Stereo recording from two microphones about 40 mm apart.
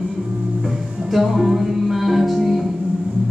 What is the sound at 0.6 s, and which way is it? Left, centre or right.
Music, centre.